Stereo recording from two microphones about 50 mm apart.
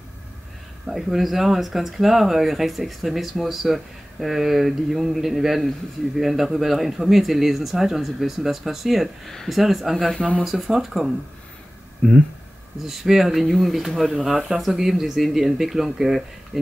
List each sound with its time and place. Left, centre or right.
0.8 s speech: centre
10.1 s speech: left
10.4 s speech: centre
12.0 s speech: left
12.8 s speech: centre